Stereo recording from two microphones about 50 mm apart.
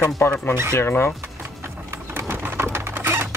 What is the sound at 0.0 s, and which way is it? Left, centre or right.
Speech, left.